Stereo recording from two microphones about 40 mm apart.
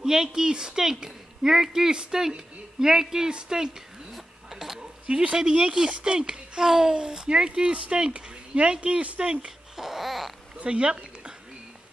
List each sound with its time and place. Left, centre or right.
0.0 s speech: centre
5.0 s speech: right
9.8 s babbling: centre
10.6 s a sound: right